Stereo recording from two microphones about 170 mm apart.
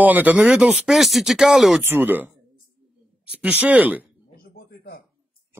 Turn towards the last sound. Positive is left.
turn(degrees=70)  # may be behind; listen again after turning